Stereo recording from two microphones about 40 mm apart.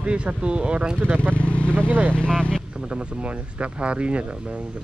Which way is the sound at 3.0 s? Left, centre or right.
Right.